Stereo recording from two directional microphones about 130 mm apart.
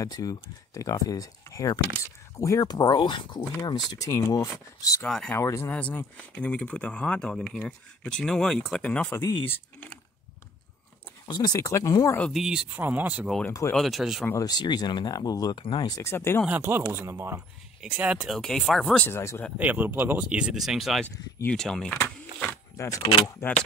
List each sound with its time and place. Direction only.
0.0 s speech: 30° left (ahead or behind)
5.0 s speech: 5° left (ahead or behind)
5.3 s speech: 20° left (ahead or behind)
11.2 s speech: 30° left (ahead or behind)
12.3 s speech: 5° right (ahead or behind)
13.5 s speech: 25° left (ahead or behind)
13.7 s speech: centre (ahead or behind)
14.3 s speech: 30° left (ahead or behind)
16.0 s speech: 20° left (ahead or behind)
16.9 s speech: 20° right (ahead or behind)
17.9 s speech: 10° right (ahead or behind)
19.0 s speech: 20° left (ahead or behind)
19.6 s speech: 15° right (ahead or behind); by 21.9 s 5° left (ahead or behind)
22.8 s speech: 25° left (ahead or behind)